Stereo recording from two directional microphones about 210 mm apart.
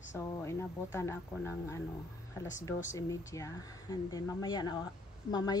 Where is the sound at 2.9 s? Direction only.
15° left (ahead or behind).